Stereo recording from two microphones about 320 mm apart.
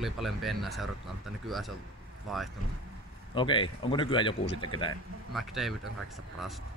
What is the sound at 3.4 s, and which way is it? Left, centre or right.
Speech, centre.